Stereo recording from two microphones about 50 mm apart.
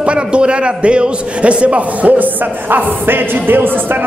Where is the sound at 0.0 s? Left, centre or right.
Right.